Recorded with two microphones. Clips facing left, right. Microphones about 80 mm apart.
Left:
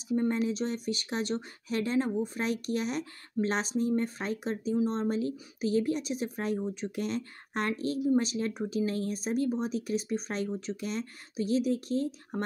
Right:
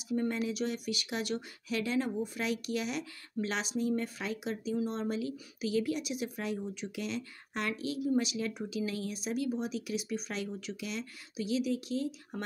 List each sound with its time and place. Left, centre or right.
0.1 s speech: left